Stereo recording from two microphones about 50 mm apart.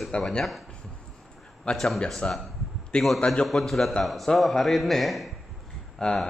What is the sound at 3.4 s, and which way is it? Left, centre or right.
Speech, centre.